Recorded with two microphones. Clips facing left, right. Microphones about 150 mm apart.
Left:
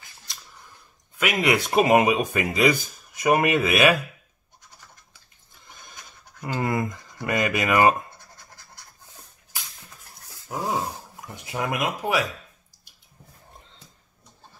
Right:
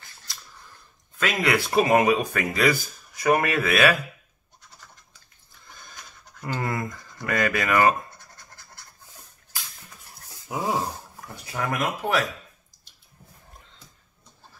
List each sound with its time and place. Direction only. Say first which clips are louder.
1.1 s speech: left 1 dB; 15° left (ahead or behind)
6.4 s speech: left 3 dB; 20° left (ahead or behind)
10.5 s dog: right 1 dB; centre (ahead or behind)
11.1 s speech: left 2 dB; 20° left (ahead or behind)